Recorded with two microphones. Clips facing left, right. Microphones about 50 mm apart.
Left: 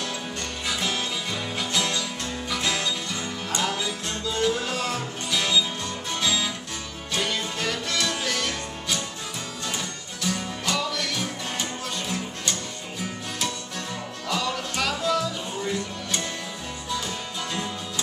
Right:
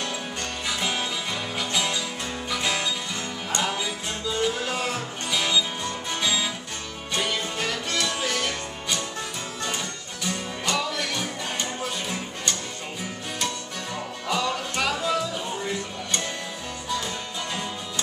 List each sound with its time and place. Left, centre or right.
0.7 s music: centre
10.2 s music: centre
14.2 s music: centre